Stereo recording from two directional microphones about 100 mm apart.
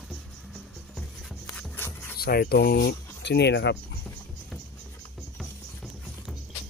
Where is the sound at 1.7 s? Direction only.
25° left (ahead or behind).